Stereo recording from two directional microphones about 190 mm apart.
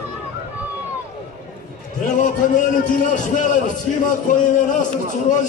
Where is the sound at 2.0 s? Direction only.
40° left (ahead or behind).